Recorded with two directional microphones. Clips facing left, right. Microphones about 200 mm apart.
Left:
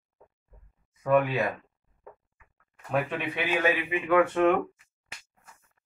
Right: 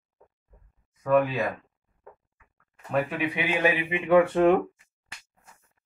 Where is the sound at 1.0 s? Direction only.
Centre (ahead or behind).